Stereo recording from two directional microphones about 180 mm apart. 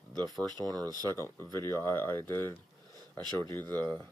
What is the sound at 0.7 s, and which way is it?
Speech, 20° right (ahead or behind).